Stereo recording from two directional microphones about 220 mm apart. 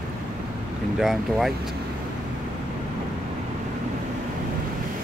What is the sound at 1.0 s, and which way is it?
Speech, centre (ahead or behind).